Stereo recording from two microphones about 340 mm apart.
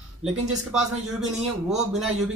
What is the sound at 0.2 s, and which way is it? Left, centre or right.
Speech, centre.